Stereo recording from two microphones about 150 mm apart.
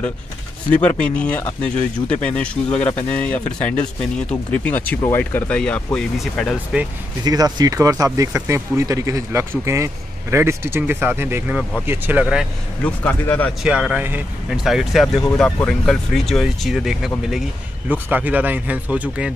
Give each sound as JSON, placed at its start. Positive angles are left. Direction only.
{"t": 0.8, "sound": "speech", "side_deg": 10}
{"t": 7.2, "sound": "speech", "side_deg": -25}
{"t": 12.8, "sound": "speech", "side_deg": 10}
{"t": 13.6, "sound": "speech", "side_deg": -5}